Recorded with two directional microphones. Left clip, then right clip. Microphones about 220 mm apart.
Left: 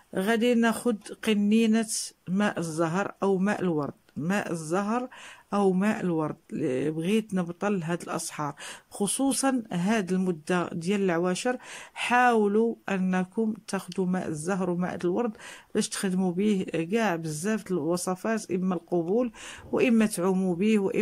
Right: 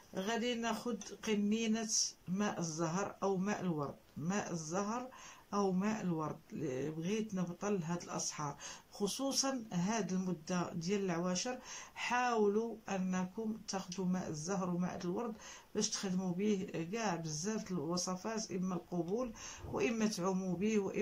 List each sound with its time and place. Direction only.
0.1 s speech: 50° left (ahead or behind)